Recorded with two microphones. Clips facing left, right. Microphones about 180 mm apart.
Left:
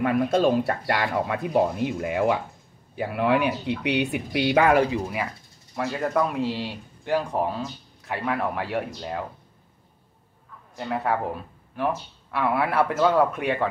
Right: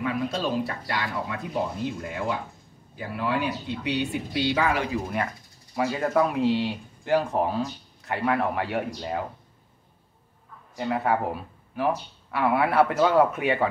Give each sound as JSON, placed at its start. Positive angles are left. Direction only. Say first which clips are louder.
{"t": 0.0, "sound": "speech", "louder": "left 7 dB", "side_deg": 55}
{"t": 5.8, "sound": "speech", "louder": "right 1 dB", "side_deg": 0}
{"t": 10.8, "sound": "speech", "louder": "right 1 dB", "side_deg": 0}